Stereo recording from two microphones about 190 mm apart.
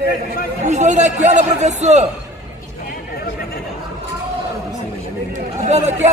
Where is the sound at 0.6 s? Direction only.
40° right (ahead or behind).